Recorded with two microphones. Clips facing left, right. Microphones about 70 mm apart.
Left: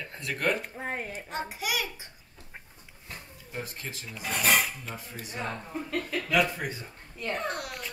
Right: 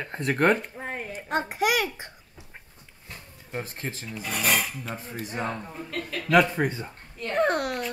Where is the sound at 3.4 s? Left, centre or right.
Right.